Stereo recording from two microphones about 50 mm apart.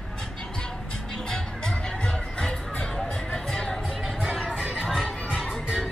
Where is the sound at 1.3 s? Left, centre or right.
Centre.